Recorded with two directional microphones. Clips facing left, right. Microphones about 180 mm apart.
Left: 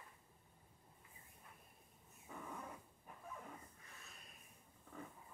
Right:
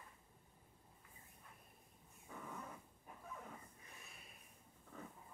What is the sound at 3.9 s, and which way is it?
Snort, 15° right (ahead or behind).